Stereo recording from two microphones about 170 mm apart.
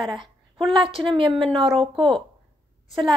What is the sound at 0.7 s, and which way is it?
Speech, 30° right (ahead or behind).